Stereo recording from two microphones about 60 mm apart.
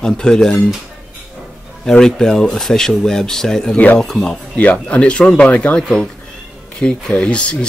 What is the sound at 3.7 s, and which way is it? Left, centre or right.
Speech, left.